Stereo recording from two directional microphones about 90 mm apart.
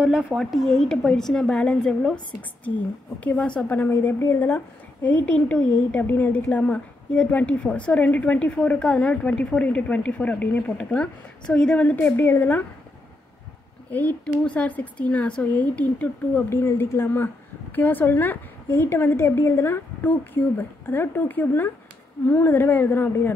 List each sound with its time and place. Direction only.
0.0 s speech: 10° right (ahead or behind)
0.4 s a woman's voice: centre (ahead or behind)
3.3 s a woman's voice: 15° left (ahead or behind)
13.8 s a woman's voice: 15° left (ahead or behind)